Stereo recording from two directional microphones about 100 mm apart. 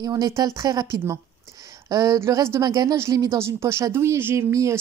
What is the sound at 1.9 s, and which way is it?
Speech, 35° right (ahead or behind).